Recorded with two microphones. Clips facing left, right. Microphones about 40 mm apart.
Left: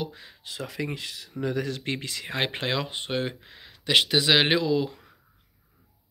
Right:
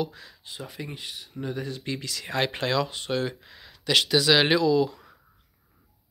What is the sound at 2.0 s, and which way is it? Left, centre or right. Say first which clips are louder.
Speech: right 5 dB; left.